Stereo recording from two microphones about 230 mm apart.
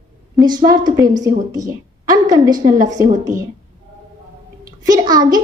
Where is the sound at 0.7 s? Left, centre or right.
Centre.